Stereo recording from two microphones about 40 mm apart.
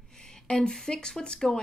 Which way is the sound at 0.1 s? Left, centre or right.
Centre.